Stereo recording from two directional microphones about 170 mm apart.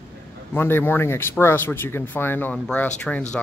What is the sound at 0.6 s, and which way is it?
Speech, 10° left (ahead or behind).